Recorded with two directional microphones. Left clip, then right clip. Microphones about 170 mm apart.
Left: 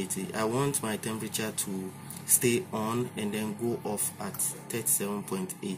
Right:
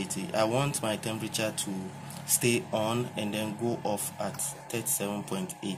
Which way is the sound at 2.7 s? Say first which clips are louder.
Right 2 dB; 45° right (ahead or behind).